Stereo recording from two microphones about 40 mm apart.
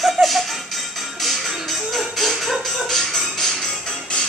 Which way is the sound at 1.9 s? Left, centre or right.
Centre.